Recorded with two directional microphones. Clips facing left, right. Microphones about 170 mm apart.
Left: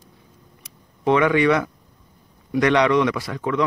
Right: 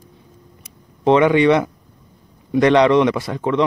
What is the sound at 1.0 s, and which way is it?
A man's voice, 25° right (ahead or behind).